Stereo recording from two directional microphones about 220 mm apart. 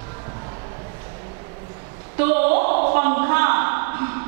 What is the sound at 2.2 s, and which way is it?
Speech, 10° right (ahead or behind).